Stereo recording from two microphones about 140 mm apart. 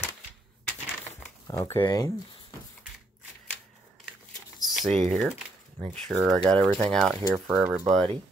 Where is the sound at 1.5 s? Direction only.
20° left (ahead or behind).